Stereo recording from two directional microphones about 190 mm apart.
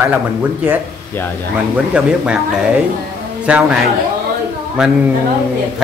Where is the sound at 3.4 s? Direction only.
5° right (ahead or behind).